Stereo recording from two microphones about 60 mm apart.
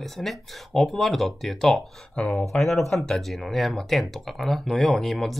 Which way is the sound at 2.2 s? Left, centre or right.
Centre.